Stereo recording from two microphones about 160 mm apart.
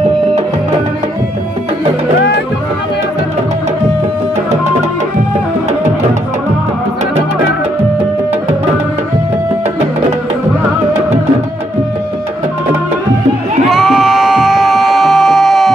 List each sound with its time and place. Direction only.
13.7 s music: 5° right (ahead or behind)